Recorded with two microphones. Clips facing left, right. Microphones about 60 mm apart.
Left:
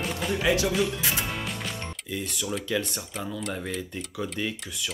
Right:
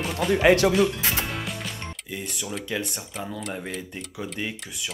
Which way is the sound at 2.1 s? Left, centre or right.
Centre.